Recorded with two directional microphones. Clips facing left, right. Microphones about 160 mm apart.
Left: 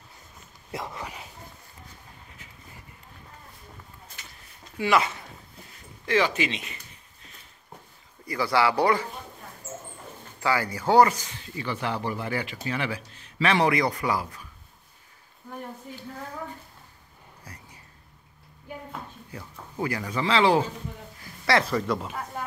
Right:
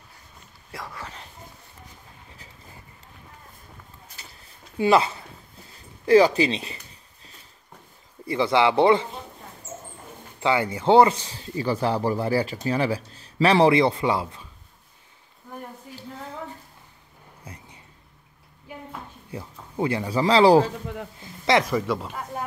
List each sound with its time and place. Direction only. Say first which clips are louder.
0.7 s whispering: left 3 dB; 20° left (ahead or behind)
4.7 s speech: right 4 dB; 30° right (ahead or behind)
6.0 s a sound: right 8 dB; 35° right (ahead or behind)
8.3 s a man's voice: right 3 dB; 20° right (ahead or behind)
10.4 s speech: right 4 dB; 25° right (ahead or behind)
19.3 s speech: right 5 dB; 25° right (ahead or behind)
21.2 s a sound: right 3 dB; 20° right (ahead or behind)
21.8 s speech: right 1 dB; centre (ahead or behind)